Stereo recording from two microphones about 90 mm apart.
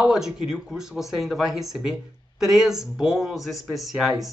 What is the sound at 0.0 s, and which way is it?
Speech, 5° right (ahead or behind).